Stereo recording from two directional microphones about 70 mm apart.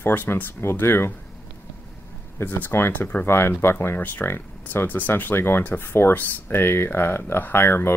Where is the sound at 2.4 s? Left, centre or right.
Left.